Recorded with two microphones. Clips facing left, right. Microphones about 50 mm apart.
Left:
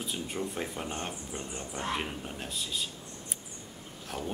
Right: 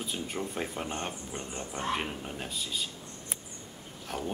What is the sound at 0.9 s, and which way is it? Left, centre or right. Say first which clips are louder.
Speech: right 1 dB; centre.